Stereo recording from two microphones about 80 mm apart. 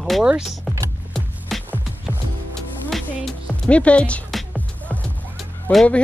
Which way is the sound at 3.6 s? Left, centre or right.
Centre.